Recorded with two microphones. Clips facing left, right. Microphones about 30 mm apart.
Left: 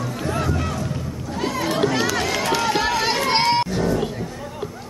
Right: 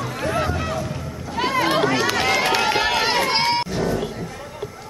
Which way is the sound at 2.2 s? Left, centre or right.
Right.